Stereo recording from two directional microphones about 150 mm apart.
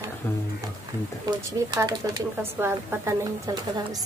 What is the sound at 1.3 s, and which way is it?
Speech, 25° right (ahead or behind).